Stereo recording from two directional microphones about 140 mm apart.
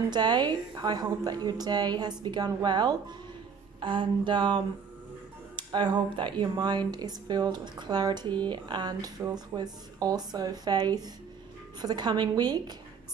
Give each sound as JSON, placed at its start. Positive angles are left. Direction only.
{"t": 0.1, "sound": "a woman's voice", "side_deg": -30}
{"t": 5.6, "sound": "a woman's voice", "side_deg": -35}